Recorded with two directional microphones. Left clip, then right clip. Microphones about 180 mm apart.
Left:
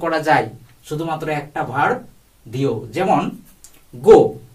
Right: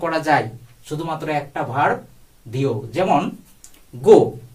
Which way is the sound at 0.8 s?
15° right (ahead or behind).